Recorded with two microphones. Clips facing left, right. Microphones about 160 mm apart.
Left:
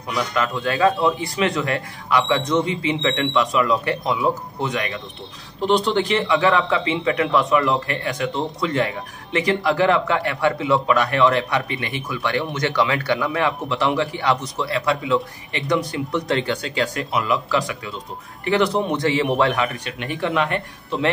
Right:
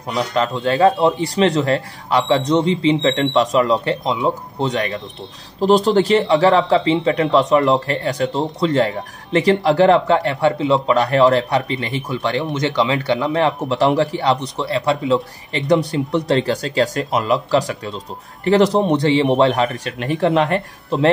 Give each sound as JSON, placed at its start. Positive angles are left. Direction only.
{"t": 0.1, "sound": "a man's voice", "side_deg": -30}
{"t": 4.6, "sound": "a man's voice", "side_deg": -35}